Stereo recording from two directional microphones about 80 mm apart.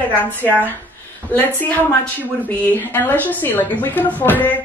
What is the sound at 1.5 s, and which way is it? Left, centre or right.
A woman's voice, left.